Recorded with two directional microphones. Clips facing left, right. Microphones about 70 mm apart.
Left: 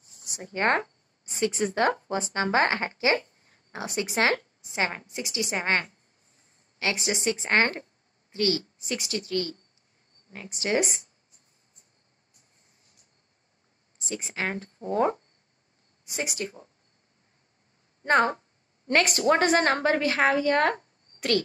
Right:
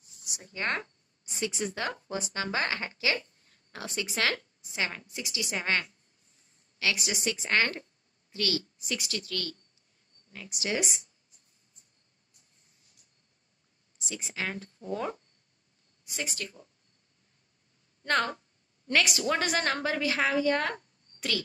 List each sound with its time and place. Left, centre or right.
0.4 s a woman's voice: left
13.9 s speech: left
16.0 s speech: left
16.4 s speech: left
18.0 s a woman's voice: left
18.9 s speech: left